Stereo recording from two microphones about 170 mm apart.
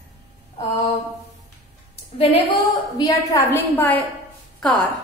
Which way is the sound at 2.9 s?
20° left (ahead or behind).